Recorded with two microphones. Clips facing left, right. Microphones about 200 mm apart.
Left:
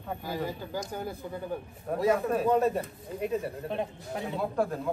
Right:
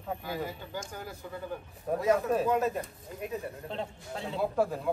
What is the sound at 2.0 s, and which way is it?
Speech, centre (ahead or behind).